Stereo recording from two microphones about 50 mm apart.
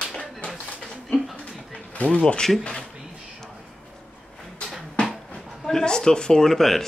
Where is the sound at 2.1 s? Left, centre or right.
Left.